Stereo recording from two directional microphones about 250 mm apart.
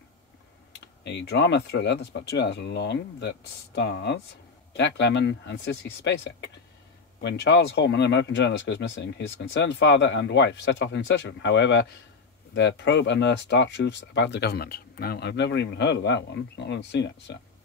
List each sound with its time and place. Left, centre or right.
1.0 s speech: left